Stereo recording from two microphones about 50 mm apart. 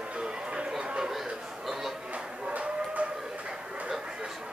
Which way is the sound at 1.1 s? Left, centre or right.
Centre.